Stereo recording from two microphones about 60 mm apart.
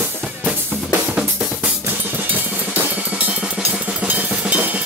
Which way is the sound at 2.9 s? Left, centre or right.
Centre.